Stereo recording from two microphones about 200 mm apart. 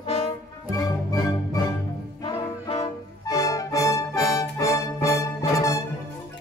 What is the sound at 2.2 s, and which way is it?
Brass instrument, 25° left (ahead or behind).